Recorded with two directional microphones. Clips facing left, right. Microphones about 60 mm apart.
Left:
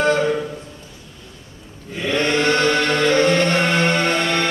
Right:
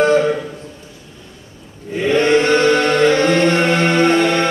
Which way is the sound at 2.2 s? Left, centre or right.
Right.